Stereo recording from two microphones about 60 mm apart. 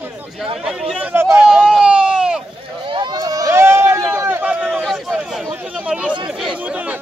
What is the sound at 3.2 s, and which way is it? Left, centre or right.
Run, right.